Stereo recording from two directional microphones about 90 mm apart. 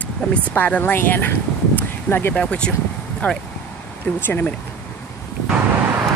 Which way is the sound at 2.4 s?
10° left (ahead or behind).